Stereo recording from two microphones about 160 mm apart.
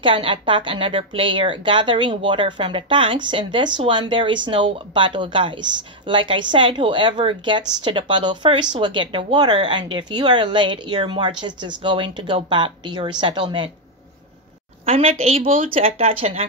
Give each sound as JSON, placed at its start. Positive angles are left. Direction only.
{"t": 0.0, "sound": "a woman's voice", "side_deg": -30}
{"t": 14.9, "sound": "a woman's voice", "side_deg": -40}